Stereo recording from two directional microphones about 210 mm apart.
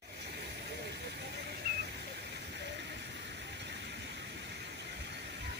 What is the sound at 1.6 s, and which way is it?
Waterfall, 50° right (ahead or behind).